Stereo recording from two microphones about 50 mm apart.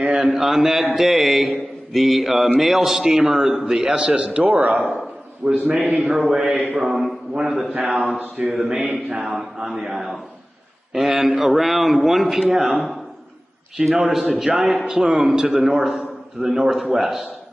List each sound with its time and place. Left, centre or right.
0.0 s a man's voice: centre
5.9 s a man's voice: centre
8.6 s speech: right
9.2 s a man's voice: centre